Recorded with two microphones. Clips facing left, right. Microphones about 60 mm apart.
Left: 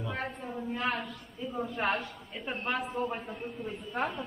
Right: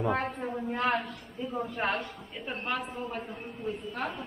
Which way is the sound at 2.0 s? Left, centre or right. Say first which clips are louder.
Right 1 dB; centre.